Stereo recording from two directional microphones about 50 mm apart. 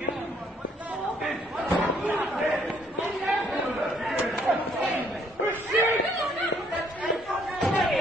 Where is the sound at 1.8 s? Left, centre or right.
Right.